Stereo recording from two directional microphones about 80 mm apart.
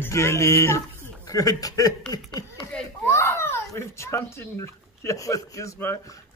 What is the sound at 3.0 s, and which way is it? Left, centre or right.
Speech, left.